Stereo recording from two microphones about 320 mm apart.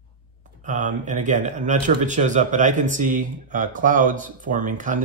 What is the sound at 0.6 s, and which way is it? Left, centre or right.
Speech, right.